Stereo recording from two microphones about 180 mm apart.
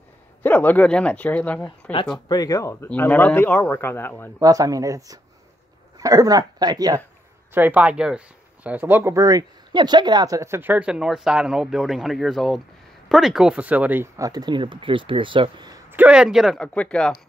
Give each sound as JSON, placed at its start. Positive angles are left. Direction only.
{"t": 0.4, "sound": "a man's voice", "side_deg": 10}
{"t": 2.1, "sound": "a man's voice", "side_deg": 20}
{"t": 4.4, "sound": "speech", "side_deg": -20}
{"t": 7.5, "sound": "speech", "side_deg": -10}
{"t": 15.9, "sound": "speech", "side_deg": -5}